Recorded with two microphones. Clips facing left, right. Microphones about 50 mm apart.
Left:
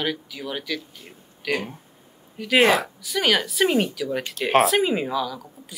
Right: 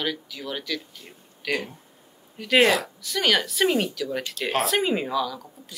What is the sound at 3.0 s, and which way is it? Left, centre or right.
A woman's voice, centre.